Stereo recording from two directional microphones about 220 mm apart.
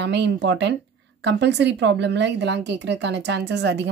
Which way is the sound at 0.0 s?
55° right (ahead or behind).